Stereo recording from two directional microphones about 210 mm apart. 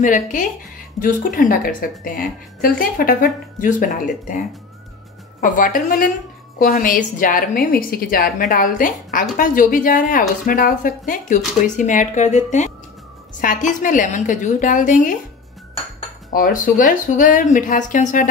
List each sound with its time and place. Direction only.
0.0 s a woman's voice: 40° left (ahead or behind)
16.3 s a woman's voice: 40° left (ahead or behind)